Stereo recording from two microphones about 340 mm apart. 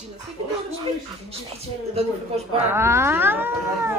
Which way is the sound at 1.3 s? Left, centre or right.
Centre.